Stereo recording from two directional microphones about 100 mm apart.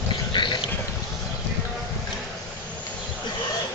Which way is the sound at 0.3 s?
55° left (ahead or behind).